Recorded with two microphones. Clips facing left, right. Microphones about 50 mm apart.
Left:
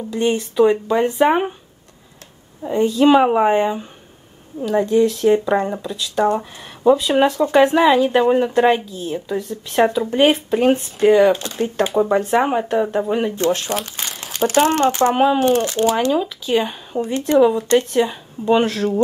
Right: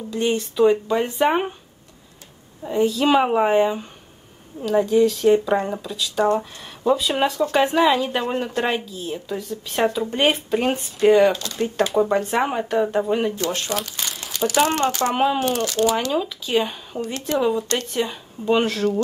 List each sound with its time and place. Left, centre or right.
0.1 s speech: centre
2.6 s speech: centre
11.3 s speech: left
11.9 s speech: centre
14.4 s speech: left
15.1 s speech: centre
15.6 s speech: left
16.1 s speech: centre
17.0 s speech: left
17.4 s speech: centre